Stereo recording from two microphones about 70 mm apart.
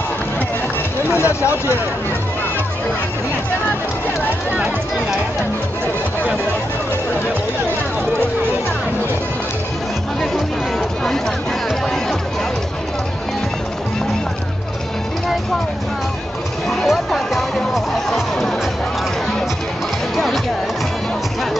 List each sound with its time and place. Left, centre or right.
1.1 s speech: left
16.6 s music: centre